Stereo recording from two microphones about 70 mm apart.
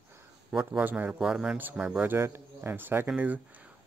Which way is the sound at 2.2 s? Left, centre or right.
Right.